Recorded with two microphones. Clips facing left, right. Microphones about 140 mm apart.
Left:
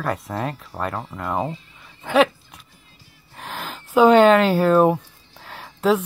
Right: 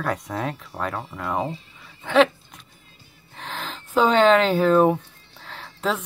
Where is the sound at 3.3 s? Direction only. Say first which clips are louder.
Left 1 dB; 10° left (ahead or behind).